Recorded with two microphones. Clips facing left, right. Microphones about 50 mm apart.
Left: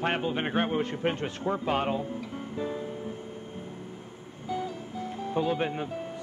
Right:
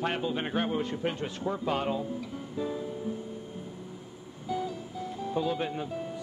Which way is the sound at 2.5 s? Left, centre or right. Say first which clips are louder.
Even; left.